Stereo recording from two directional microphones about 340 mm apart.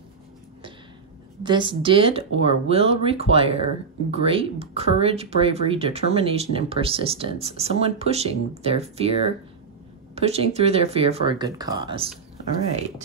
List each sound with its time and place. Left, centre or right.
1.4 s speech: centre